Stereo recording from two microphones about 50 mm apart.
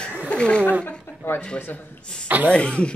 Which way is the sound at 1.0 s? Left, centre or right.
Left.